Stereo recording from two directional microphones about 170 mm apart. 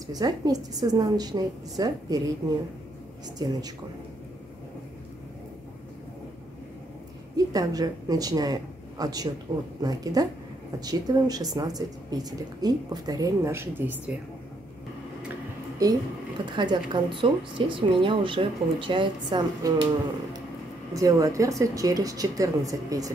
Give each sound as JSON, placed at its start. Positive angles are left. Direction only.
{"t": 0.0, "sound": "speech", "side_deg": -20}
{"t": 3.3, "sound": "speech", "side_deg": -25}
{"t": 7.3, "sound": "a woman's voice", "side_deg": -20}
{"t": 15.8, "sound": "speech", "side_deg": -20}
{"t": 20.9, "sound": "speech", "side_deg": -20}